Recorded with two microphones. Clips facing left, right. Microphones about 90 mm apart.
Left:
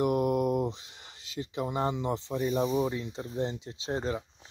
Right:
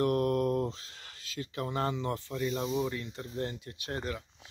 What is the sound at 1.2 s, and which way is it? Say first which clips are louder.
Speech: left 3 dB; 20° left (ahead or behind).